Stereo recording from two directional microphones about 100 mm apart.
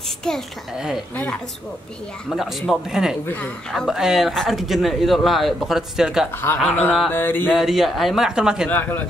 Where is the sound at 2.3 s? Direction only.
Centre (ahead or behind).